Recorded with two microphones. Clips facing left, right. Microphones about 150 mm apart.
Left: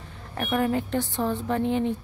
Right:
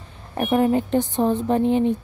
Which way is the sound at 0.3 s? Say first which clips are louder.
Right 6 dB; 20° right (ahead or behind).